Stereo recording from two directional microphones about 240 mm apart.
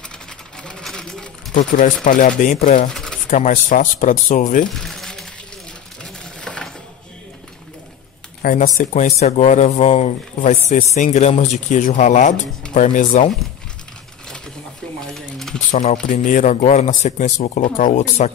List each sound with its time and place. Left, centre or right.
0.6 s speech: centre
1.5 s speech: left
2.9 s pigeon: centre
3.3 s speech: left
4.7 s a sound: centre
6.4 s a sound: centre
8.4 s speech: left
15.0 s a sound: centre
15.7 s speech: left